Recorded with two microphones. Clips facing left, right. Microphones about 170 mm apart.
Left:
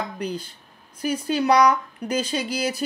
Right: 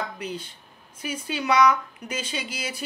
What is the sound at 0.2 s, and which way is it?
Speech, 35° left (ahead or behind).